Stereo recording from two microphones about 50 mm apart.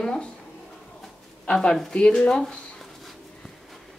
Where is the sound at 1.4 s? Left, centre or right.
Centre.